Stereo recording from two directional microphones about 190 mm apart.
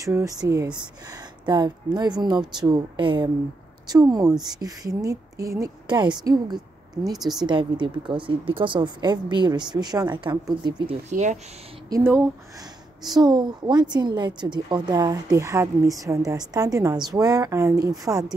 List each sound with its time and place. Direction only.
0.0 s speech: 15° right (ahead or behind)
7.2 s speech: centre (ahead or behind)
7.4 s speech: 25° right (ahead or behind)
11.1 s speech: 40° right (ahead or behind)
11.9 s speech: 10° right (ahead or behind)